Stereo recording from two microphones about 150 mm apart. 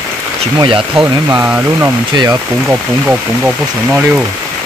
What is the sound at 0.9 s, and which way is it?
Speech, 15° right (ahead or behind).